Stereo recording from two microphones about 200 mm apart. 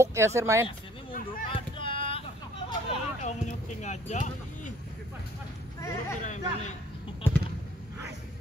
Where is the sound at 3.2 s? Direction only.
35° left (ahead or behind).